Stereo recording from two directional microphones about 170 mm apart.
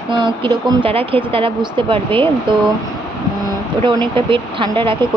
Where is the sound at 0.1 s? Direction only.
25° right (ahead or behind).